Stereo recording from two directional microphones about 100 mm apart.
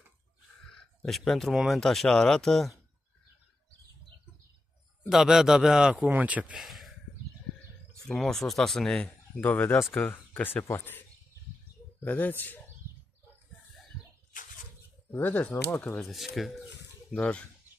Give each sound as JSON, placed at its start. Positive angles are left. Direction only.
{"t": 0.7, "sound": "speech", "side_deg": 5}
{"t": 5.0, "sound": "speech", "side_deg": -5}
{"t": 6.6, "sound": "a sound", "side_deg": 0}
{"t": 8.1, "sound": "speech", "side_deg": 5}
{"t": 15.0, "sound": "speech", "side_deg": 20}
{"t": 16.0, "sound": "speech", "side_deg": 0}